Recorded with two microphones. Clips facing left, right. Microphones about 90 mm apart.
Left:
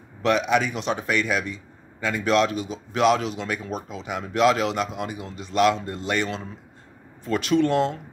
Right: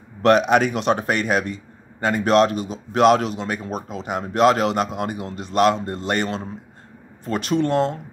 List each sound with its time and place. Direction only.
0.2 s a man's voice: 55° right (ahead or behind)
3.3 s a man's voice: 40° right (ahead or behind)